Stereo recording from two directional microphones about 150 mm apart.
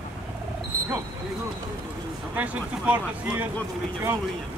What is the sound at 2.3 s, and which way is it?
Speech, 10° right (ahead or behind).